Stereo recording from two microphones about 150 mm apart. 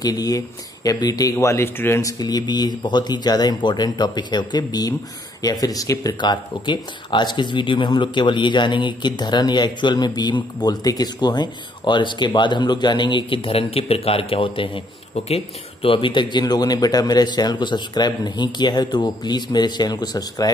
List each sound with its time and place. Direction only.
0.0 s speech: 25° left (ahead or behind)